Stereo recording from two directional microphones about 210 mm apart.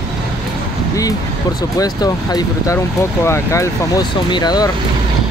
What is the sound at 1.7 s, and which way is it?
Speech, 20° left (ahead or behind).